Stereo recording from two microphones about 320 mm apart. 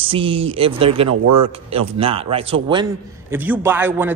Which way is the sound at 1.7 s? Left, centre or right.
Centre.